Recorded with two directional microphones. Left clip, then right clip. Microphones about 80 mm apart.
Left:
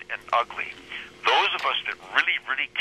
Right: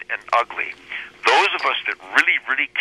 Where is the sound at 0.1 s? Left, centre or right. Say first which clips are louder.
Right 5 dB; right.